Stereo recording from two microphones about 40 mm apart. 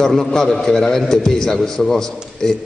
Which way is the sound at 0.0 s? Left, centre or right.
Centre.